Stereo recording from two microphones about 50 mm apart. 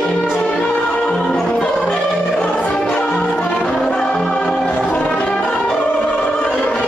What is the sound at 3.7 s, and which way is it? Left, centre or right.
Music, centre.